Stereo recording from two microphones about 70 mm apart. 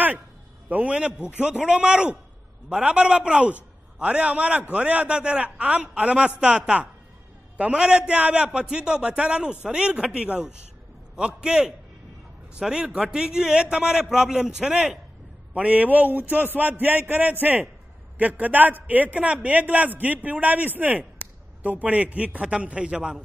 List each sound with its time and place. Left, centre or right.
0.7 s a man's voice: centre